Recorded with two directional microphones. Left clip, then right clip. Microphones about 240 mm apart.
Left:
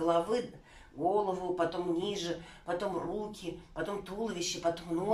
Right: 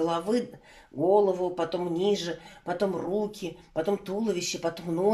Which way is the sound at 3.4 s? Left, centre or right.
Right.